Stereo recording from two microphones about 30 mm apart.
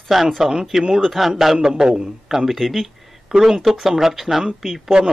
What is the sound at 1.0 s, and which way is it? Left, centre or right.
Speech, centre.